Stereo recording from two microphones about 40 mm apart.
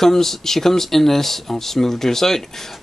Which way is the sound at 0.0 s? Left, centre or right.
Centre.